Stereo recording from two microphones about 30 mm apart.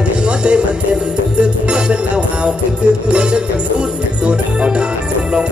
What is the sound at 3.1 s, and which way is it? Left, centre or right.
Music, right.